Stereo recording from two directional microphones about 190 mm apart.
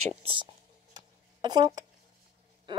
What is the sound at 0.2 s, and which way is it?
Speech, 25° right (ahead or behind).